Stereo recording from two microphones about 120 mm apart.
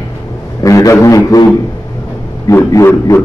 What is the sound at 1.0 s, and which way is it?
Speech, 30° left (ahead or behind).